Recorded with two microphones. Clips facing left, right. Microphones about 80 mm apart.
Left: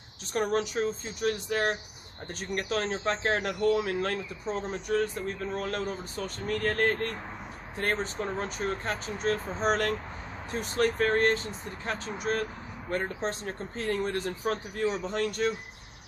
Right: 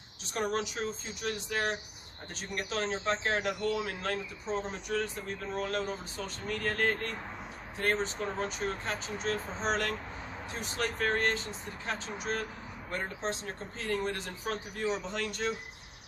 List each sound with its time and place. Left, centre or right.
0.3 s speech: left